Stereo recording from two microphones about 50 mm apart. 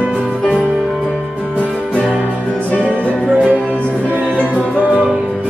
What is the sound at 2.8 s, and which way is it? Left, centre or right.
Music, left.